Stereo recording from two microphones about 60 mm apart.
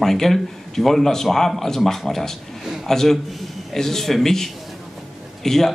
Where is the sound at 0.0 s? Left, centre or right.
Centre.